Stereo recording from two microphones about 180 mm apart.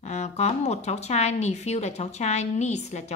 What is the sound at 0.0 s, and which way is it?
Speech, 40° left (ahead or behind).